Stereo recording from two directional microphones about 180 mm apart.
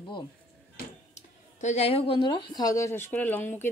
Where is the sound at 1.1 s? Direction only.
40° left (ahead or behind); by 3.7 s 15° left (ahead or behind).